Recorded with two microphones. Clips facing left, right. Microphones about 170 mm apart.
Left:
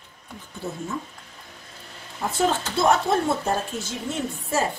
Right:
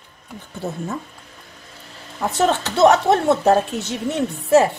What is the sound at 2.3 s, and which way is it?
Speech, 75° right (ahead or behind).